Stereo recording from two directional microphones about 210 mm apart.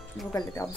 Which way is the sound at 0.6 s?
15° left (ahead or behind).